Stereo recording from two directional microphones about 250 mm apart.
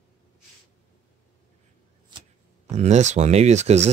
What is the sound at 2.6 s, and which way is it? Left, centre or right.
Speech, right.